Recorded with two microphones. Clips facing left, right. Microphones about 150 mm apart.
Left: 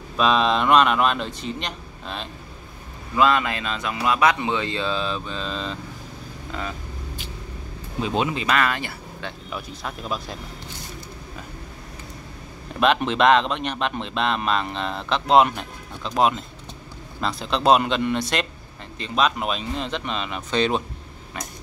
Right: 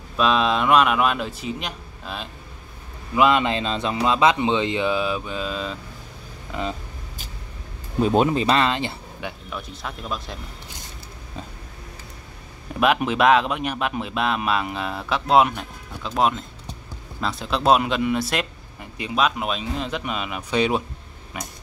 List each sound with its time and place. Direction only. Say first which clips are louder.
0.2 s speech: even; centre (ahead or behind)
3.2 s speech: right 2 dB; 20° right (ahead or behind)
8.0 s speech: right 6 dB; 45° right (ahead or behind); by 9.3 s 20° right (ahead or behind)
9.5 s speech: left 1 dB; 5° left (ahead or behind)
12.8 s speech: even; 5° right (ahead or behind)